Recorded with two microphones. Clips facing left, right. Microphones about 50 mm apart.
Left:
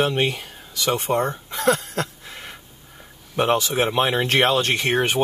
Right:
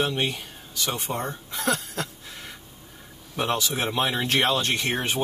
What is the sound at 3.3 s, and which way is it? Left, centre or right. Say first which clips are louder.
Speech: left 6 dB; left.